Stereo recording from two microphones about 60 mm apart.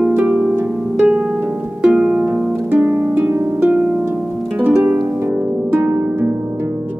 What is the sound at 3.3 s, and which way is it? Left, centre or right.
Harp, right.